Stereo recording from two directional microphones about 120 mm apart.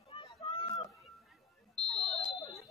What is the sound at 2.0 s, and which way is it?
Smoke detector, 45° left (ahead or behind).